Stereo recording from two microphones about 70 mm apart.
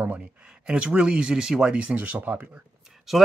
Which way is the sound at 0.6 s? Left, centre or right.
Centre.